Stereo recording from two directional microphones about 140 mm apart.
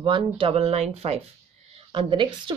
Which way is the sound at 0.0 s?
35° right (ahead or behind).